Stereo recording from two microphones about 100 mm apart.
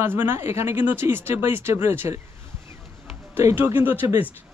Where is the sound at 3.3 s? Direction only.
20° right (ahead or behind).